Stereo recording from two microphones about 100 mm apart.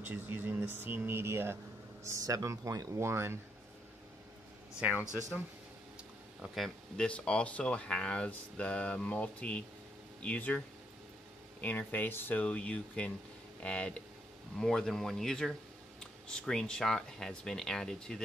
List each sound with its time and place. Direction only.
0.0 s speech: 20° right (ahead or behind)
6.4 s speech: centre (ahead or behind)
7.1 s speech: 10° left (ahead or behind)
11.6 s speech: 15° left (ahead or behind)